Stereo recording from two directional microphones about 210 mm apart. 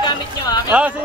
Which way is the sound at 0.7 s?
5° right (ahead or behind).